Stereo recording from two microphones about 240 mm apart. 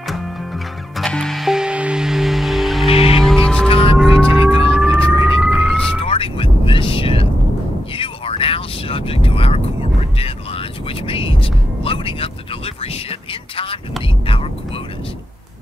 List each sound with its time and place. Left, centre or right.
0.9 s music: centre
2.9 s music: left
3.2 s music: centre
3.6 s music: left
4.0 s music: centre
4.7 s police car: centre
5.9 s vehicle: left
10.1 s music: left
14.0 s vehicle: left